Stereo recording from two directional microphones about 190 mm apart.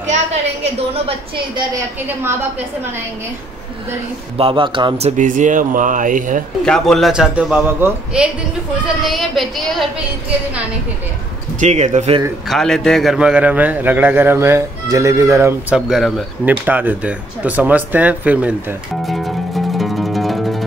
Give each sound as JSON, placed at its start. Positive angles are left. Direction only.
{"t": 0.0, "sound": "a sound", "side_deg": -40}
{"t": 1.0, "sound": "a woman's voice", "side_deg": -25}
{"t": 4.4, "sound": "speech", "side_deg": -30}
{"t": 6.6, "sound": "a man's voice", "side_deg": 5}
{"t": 11.6, "sound": "speech", "side_deg": -35}
{"t": 12.4, "sound": "a man's voice", "side_deg": 0}
{"t": 15.7, "sound": "speech", "side_deg": 0}